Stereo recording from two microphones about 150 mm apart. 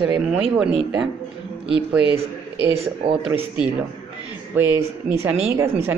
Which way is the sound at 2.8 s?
35° right (ahead or behind).